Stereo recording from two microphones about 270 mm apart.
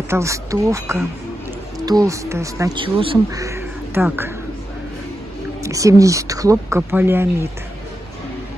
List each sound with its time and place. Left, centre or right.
0.1 s speech: centre
5.6 s speech: centre